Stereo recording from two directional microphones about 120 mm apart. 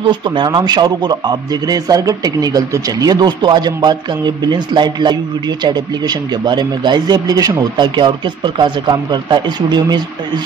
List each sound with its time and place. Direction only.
0.0 s speech: 40° right (ahead or behind)